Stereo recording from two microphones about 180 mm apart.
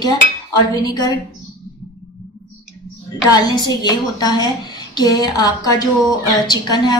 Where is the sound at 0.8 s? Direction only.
20° left (ahead or behind).